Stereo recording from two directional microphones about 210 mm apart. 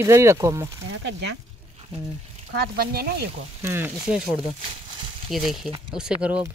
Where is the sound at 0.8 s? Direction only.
60° right (ahead or behind).